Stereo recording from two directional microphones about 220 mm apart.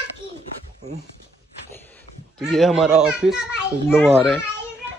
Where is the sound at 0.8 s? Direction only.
30° right (ahead or behind).